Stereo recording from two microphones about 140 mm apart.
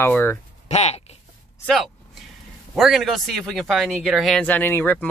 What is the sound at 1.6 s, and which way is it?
Speech, 5° left (ahead or behind).